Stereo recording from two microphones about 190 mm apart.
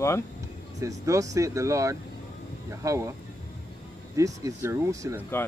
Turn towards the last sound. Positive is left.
turn(degrees=-15)  # may be behind; listen again after turning